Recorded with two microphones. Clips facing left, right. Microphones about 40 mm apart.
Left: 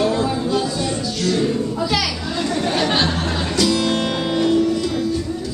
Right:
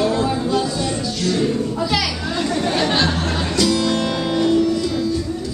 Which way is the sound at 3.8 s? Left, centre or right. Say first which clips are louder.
Even; centre.